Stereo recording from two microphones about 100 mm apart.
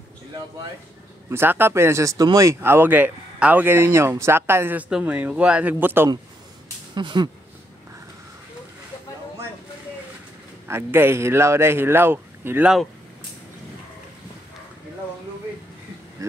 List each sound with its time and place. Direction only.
1.3 s speech: 20° right (ahead or behind)
2.6 s speech: 20° right (ahead or behind)
4.8 s speech: 10° right (ahead or behind)
7.0 s speech: 50° right (ahead or behind)
10.7 s speech: 25° right (ahead or behind)